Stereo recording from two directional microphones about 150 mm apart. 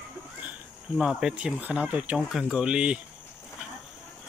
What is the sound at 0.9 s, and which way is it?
Speech, centre (ahead or behind).